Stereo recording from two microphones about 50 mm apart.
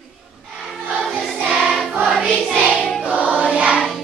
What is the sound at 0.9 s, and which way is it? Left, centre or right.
Choir, centre.